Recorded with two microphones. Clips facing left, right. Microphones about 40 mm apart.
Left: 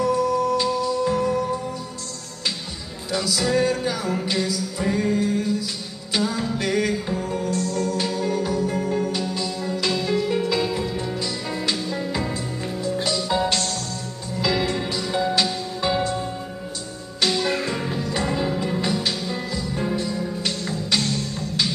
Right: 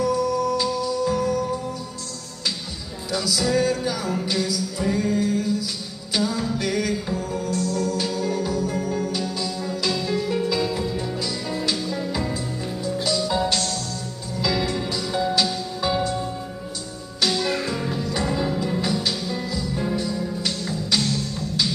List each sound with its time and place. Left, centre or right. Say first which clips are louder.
0.0 s music: left 1 dB; centre
3.1 s music: even; centre
7.5 s music: right 2 dB; centre